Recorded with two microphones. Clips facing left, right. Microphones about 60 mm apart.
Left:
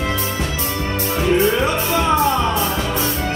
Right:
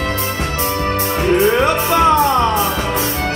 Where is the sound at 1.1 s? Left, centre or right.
Right.